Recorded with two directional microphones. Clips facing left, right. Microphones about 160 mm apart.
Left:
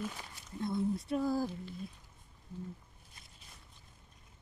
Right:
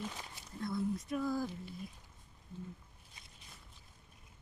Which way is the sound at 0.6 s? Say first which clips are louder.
Left 3 dB; 25° left (ahead or behind).